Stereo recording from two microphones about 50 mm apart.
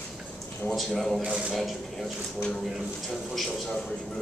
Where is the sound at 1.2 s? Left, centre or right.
Centre.